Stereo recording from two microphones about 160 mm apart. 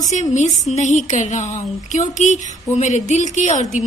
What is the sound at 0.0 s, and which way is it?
Speech, 50° left (ahead or behind).